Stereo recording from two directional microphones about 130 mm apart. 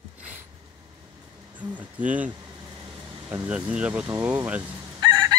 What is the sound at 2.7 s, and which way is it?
Air conditioning, 30° right (ahead or behind).